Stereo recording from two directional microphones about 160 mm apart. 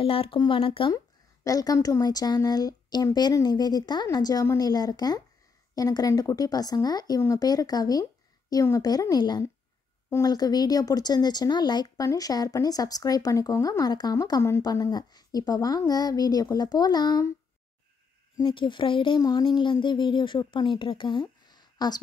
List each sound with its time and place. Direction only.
0.0 s speech: 35° left (ahead or behind)
0.9 s speech: 20° left (ahead or behind)
18.4 s speech: 30° left (ahead or behind)